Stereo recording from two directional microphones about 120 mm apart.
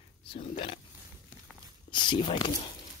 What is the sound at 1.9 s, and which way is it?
Speech, 40° left (ahead or behind).